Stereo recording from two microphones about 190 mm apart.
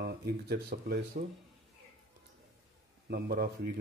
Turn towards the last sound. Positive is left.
turn(degrees=-55)  # may be behind; listen again after turning